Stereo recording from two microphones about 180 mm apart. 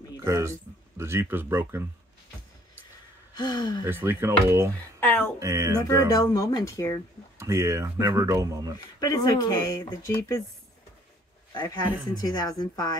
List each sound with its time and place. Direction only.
0.2 s speech: 15° right (ahead or behind)
3.3 s speech: 25° left (ahead or behind)
3.8 s speech: 10° right (ahead or behind)
5.0 s a sound: 10° left (ahead or behind)
5.4 s speech: 15° right (ahead or behind)
6.1 s speech: 20° left (ahead or behind)
7.3 s speech: 15° right (ahead or behind)
8.7 s speech: 20° left (ahead or behind)
11.5 s speech: 25° left (ahead or behind)